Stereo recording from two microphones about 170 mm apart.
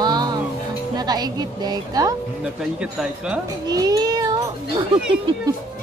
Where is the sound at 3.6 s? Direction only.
25° right (ahead or behind).